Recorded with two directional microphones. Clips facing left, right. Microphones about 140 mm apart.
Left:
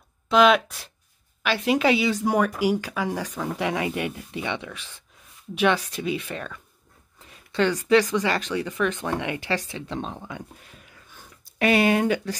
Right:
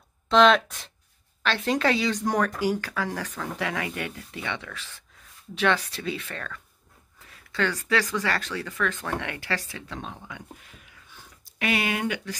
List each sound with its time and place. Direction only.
0.3 s speech: 5° left (ahead or behind); by 12.4 s 35° left (ahead or behind)